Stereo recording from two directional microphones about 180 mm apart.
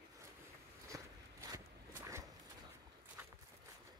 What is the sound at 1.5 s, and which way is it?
Zipper, 15° right (ahead or behind).